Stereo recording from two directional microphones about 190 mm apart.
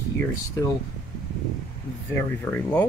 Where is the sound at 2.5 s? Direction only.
5° left (ahead or behind).